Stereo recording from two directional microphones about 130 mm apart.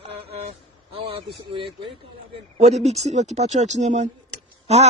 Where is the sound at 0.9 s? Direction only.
45° right (ahead or behind).